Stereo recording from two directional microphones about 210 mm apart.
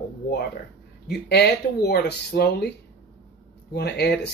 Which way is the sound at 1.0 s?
50° left (ahead or behind).